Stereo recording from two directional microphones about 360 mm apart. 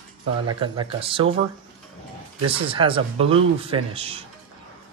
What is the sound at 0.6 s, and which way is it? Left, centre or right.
Speech, centre.